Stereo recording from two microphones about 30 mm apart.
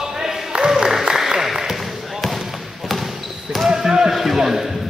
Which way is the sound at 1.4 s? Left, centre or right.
Centre.